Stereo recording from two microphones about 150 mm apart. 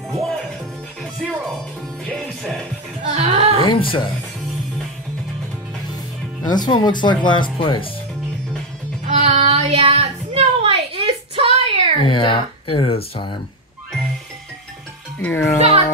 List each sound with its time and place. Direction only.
0.1 s music: centre (ahead or behind)
3.0 s music: 45° right (ahead or behind)
3.7 s speech: 35° left (ahead or behind)
6.4 s speech: 30° left (ahead or behind)
9.0 s child singing: 50° right (ahead or behind)
12.1 s speech: 35° left (ahead or behind)
15.1 s a child's voice: 15° left (ahead or behind)